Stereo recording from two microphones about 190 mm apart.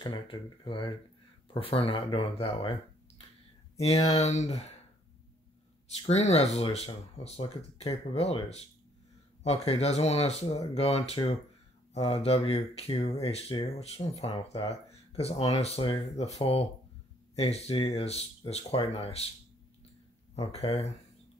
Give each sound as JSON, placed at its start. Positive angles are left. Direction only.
{"t": 0.0, "sound": "speech", "side_deg": 25}
{"t": 6.0, "sound": "speech", "side_deg": 35}
{"t": 20.3, "sound": "speech", "side_deg": 30}